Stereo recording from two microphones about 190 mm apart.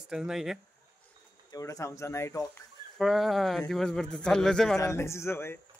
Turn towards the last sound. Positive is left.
turn(degrees=10)  # may be behind; listen again after turning